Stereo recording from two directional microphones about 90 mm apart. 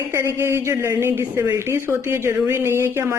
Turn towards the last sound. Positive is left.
turn(degrees=-30)  # may be behind; listen again after turning